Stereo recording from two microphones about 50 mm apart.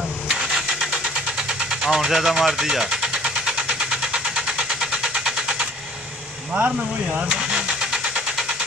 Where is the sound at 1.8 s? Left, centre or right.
Centre.